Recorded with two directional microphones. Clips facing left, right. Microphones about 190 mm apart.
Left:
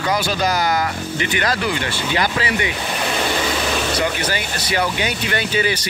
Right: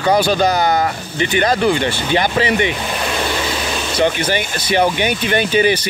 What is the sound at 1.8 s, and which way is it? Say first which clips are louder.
Speech: right 4 dB; 25° right (ahead or behind).